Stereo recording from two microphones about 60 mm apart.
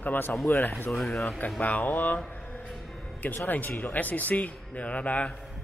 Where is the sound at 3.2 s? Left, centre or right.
Left.